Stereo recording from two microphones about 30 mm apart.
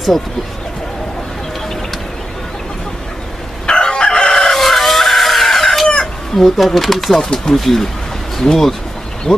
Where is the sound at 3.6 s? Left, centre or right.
Left.